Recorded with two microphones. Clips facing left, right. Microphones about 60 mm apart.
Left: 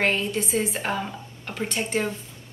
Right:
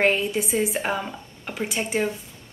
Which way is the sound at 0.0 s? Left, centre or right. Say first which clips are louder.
Right 3 dB; centre.